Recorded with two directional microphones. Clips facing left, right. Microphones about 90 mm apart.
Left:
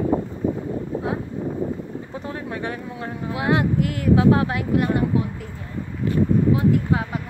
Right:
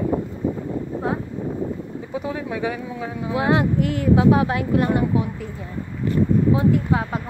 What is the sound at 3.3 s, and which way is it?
Speech, 25° right (ahead or behind).